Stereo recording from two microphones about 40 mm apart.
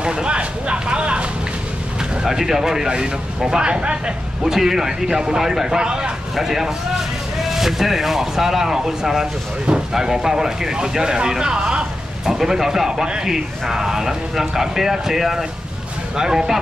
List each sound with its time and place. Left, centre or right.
0.0 s a sound: right
2.2 s speech: centre
4.4 s speech: centre
5.9 s speech: right
6.3 s speech: centre